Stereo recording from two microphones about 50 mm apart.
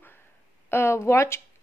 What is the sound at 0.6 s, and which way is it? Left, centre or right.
Speech, left.